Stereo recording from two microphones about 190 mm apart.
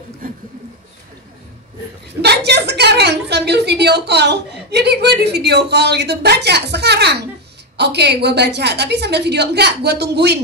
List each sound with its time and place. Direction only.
2.2 s a woman's voice: 60° right (ahead or behind)